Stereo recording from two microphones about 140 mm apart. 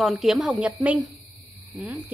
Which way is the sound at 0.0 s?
Centre (ahead or behind).